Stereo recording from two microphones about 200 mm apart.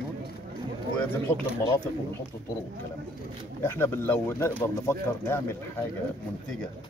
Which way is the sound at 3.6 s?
10° left (ahead or behind).